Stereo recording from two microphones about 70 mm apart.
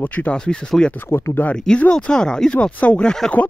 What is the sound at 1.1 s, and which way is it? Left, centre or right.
Speech, left.